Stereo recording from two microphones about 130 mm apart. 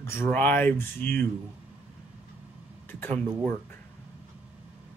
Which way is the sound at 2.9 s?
15° left (ahead or behind).